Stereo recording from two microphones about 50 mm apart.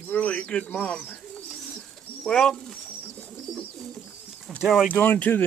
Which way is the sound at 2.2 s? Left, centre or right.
Centre.